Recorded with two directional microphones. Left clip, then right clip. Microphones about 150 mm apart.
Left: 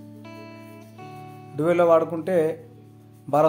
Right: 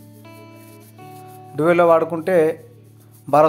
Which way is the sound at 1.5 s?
20° right (ahead or behind).